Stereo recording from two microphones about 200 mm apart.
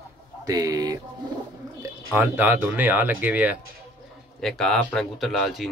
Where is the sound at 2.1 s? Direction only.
10° right (ahead or behind).